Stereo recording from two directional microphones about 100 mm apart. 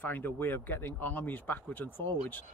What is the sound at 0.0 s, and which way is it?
Speech, 20° left (ahead or behind).